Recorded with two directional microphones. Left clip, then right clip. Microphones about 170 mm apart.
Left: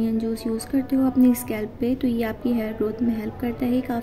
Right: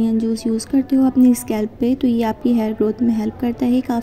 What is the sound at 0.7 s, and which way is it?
A woman's voice, 20° right (ahead or behind).